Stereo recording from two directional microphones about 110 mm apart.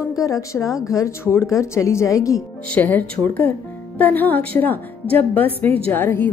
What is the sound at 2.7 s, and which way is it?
A woman's voice, 15° left (ahead or behind).